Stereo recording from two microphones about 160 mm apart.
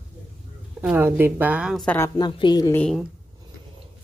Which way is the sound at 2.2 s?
30° left (ahead or behind).